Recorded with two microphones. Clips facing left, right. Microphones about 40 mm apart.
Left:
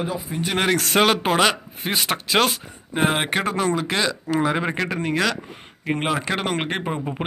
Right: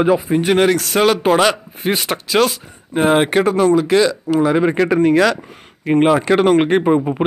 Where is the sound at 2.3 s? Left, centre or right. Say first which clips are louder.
Right 5 dB; centre.